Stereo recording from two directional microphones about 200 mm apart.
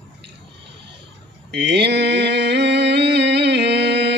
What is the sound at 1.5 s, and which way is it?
Mantra, 60° right (ahead or behind).